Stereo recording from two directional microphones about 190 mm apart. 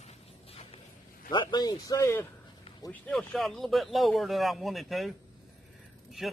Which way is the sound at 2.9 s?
5° left (ahead or behind).